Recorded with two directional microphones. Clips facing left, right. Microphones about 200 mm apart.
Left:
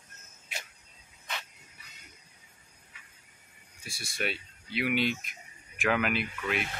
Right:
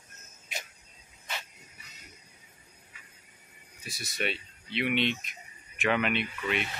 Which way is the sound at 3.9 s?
30° left (ahead or behind).